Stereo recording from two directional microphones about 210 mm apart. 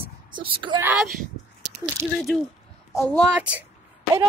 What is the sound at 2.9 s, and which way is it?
Speech, 10° left (ahead or behind).